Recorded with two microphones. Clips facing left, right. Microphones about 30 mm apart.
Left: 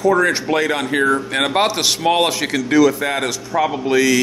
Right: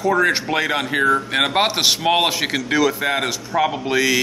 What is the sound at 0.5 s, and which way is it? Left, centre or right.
Speech, centre.